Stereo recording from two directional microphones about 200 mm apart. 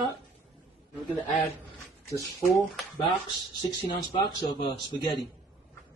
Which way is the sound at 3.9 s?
20° left (ahead or behind).